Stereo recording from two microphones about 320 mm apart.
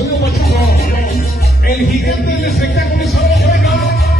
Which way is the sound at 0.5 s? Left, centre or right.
Left.